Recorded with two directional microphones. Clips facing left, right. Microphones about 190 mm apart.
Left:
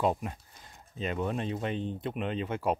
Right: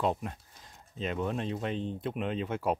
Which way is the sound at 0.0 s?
5° left (ahead or behind).